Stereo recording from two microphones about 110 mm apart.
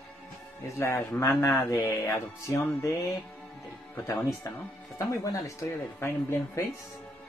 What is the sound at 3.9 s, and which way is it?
Speech, 30° left (ahead or behind).